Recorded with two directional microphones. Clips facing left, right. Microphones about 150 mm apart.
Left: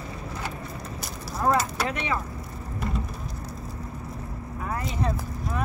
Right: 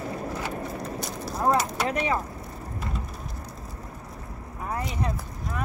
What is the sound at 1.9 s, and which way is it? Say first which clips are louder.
Speech: right 3 dB; 40° right (ahead or behind).